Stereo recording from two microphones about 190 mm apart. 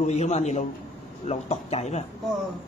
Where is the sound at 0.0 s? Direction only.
35° left (ahead or behind).